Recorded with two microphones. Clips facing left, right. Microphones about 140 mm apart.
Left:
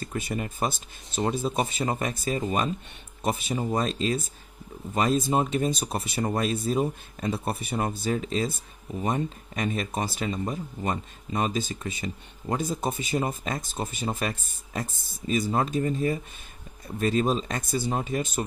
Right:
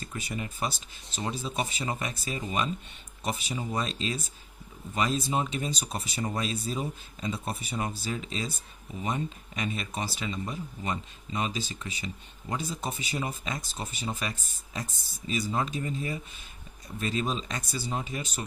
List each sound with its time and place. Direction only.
0.0 s speech: 50° left (ahead or behind)